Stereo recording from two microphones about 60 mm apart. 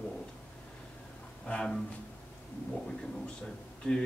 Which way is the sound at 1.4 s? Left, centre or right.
Centre.